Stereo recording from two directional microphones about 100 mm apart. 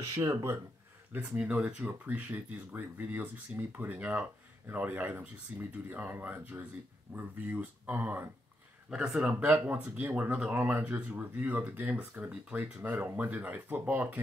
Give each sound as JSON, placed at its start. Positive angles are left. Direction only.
{"t": 0.1, "sound": "speech", "side_deg": -30}
{"t": 1.3, "sound": "speech", "side_deg": -10}
{"t": 8.9, "sound": "speech", "side_deg": -5}
{"t": 9.3, "sound": "speech", "side_deg": -15}